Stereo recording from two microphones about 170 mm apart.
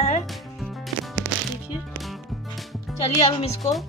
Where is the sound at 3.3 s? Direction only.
35° left (ahead or behind).